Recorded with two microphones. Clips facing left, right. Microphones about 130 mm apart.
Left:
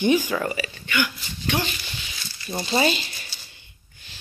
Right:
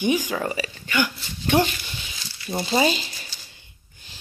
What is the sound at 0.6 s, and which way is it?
Speech, 35° right (ahead or behind).